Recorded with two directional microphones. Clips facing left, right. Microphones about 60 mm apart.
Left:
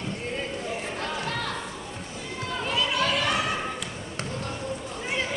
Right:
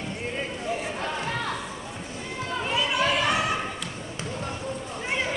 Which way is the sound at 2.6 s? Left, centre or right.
Centre.